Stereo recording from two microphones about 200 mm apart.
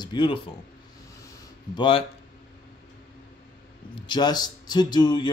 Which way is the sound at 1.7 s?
25° left (ahead or behind).